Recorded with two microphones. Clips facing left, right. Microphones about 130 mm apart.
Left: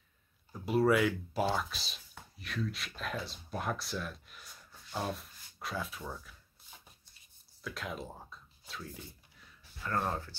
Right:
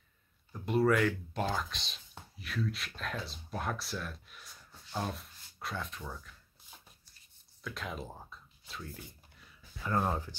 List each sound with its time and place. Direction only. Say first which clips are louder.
0.5 s speech: even; 5° left (ahead or behind)
7.6 s speech: even; centre (ahead or behind)
9.8 s speech: right 2 dB; 15° right (ahead or behind)